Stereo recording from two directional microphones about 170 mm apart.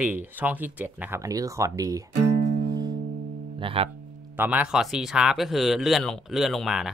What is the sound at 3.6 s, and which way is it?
Speech, 35° right (ahead or behind).